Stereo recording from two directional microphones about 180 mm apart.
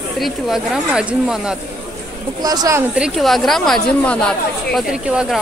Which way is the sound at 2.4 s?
20° right (ahead or behind).